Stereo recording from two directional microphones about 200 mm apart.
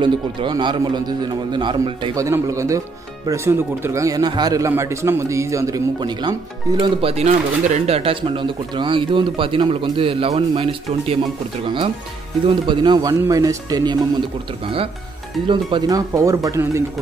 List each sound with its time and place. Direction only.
0.0 s speech: 25° right (ahead or behind)
15.7 s speech: 15° right (ahead or behind)